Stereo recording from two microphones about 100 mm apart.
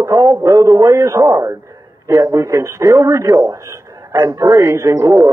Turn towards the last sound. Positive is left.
turn(degrees=-30)  # may be behind; listen again after turning